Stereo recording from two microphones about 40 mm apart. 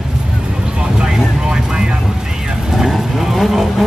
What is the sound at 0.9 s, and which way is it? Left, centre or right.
Vehicle, centre.